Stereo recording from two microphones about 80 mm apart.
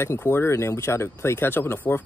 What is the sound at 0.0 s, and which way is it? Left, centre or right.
Speech, left.